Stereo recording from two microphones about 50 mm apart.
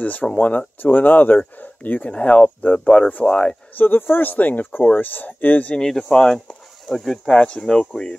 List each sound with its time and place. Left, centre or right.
0.0 s speech: left
3.7 s speech: left
5.8 s speech: centre